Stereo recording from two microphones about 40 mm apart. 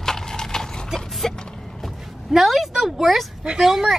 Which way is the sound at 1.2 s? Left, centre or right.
Centre.